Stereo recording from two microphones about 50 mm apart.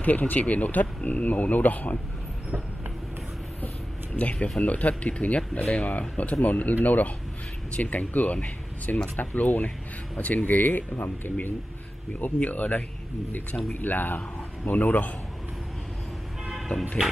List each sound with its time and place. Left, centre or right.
0.0 s speech: left
4.2 s speech: left